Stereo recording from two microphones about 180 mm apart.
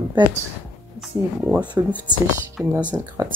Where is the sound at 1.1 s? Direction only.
15° right (ahead or behind).